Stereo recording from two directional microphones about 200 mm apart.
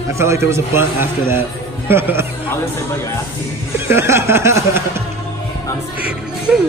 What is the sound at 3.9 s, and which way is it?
A man's voice, 10° right (ahead or behind).